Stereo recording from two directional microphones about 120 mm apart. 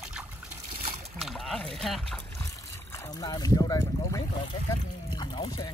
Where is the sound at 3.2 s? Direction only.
30° left (ahead or behind).